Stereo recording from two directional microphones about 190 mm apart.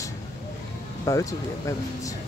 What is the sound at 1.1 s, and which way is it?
Speech, 15° left (ahead or behind).